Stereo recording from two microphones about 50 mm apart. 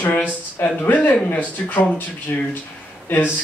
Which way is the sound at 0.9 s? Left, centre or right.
Left.